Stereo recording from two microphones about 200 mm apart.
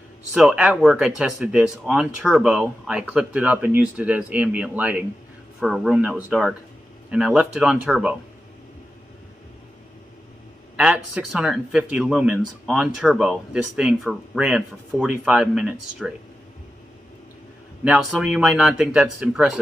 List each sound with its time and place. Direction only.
0.3 s speech: 5° right (ahead or behind)
10.8 s speech: 5° right (ahead or behind)
17.8 s speech: 5° right (ahead or behind)